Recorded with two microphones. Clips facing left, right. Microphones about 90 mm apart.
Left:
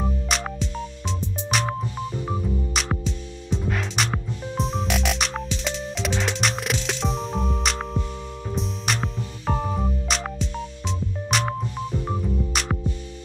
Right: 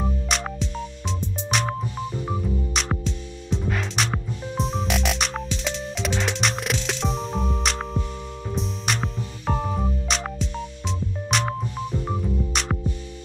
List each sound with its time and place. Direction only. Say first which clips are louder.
0.0 s music: even; centre (ahead or behind)